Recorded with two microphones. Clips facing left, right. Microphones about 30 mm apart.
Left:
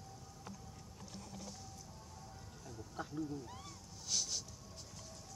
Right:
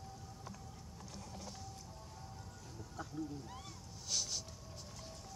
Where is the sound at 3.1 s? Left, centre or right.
Centre.